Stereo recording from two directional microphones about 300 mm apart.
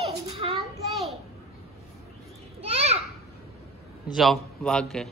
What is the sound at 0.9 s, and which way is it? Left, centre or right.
Speech, centre.